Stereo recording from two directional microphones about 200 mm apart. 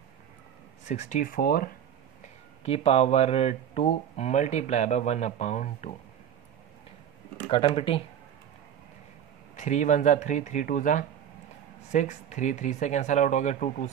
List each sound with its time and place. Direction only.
0.8 s speech: 35° left (ahead or behind)
2.2 s speech: 30° left (ahead or behind)
7.4 s speech: 25° left (ahead or behind)
9.6 s speech: 35° left (ahead or behind)